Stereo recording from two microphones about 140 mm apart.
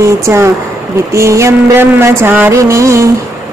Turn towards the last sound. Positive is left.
turn(degrees=-20)  # may be behind; listen again after turning